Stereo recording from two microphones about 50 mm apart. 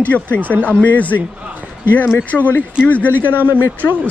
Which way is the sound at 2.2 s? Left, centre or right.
Left.